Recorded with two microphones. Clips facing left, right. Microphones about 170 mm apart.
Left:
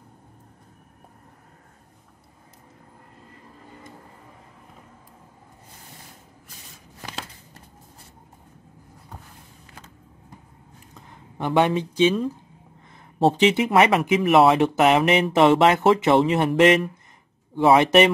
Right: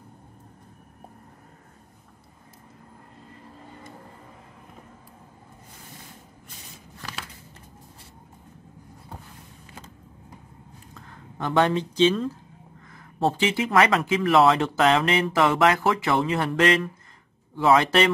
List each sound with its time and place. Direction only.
11.0 s speech: 20° left (ahead or behind)
12.9 s a sound: 20° left (ahead or behind)
13.7 s speech: 20° left (ahead or behind)